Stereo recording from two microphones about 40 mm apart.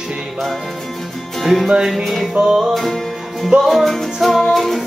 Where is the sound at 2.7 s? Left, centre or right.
Centre.